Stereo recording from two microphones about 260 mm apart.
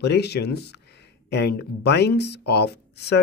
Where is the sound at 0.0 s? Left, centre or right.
Left.